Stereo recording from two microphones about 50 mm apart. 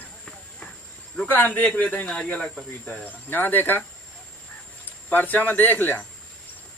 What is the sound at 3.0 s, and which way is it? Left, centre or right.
Speech, left.